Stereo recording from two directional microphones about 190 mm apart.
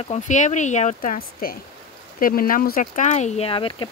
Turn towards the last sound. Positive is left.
turn(degrees=30)  # may be behind; listen again after turning